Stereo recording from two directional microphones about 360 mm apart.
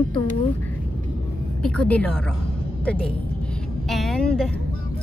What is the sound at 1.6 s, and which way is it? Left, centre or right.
Music, centre.